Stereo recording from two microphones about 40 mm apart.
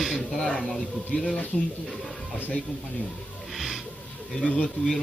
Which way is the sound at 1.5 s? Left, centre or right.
Centre.